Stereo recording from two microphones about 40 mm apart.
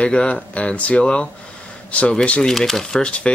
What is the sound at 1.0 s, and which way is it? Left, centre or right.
Speech, left.